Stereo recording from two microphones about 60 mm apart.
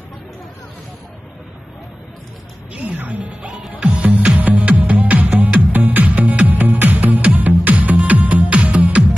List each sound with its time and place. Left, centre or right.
2.7 s speech: right
3.4 s music: centre
3.7 s music: right